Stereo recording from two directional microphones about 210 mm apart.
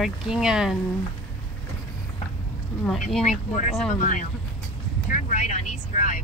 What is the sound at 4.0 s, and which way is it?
Speech, 40° left (ahead or behind).